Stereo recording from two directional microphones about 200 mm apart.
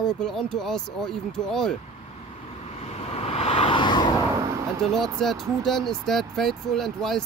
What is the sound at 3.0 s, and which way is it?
Vehicle, 30° left (ahead or behind).